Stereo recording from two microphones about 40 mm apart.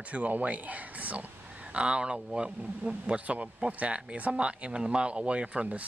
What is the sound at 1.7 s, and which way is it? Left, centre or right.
Speech, right.